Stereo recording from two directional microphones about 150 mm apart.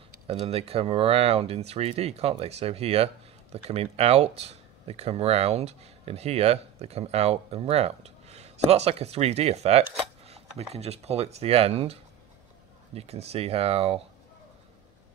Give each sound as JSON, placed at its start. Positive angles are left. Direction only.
{"t": 0.3, "sound": "speech", "side_deg": -40}